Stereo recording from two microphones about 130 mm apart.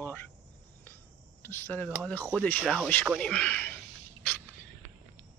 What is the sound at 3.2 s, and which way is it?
Speech, 10° left (ahead or behind).